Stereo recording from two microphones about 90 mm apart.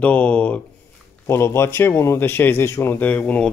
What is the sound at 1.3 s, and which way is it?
Speech, 30° left (ahead or behind).